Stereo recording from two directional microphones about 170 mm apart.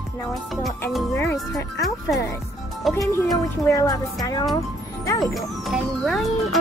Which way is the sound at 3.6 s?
20° left (ahead or behind).